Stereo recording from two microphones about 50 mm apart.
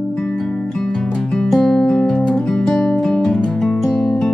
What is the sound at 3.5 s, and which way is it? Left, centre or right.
Music, centre.